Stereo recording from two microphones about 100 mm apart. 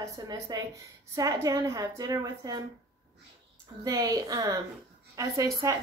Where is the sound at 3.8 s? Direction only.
40° right (ahead or behind).